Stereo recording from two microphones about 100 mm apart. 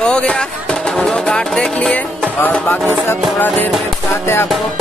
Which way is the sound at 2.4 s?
15° left (ahead or behind).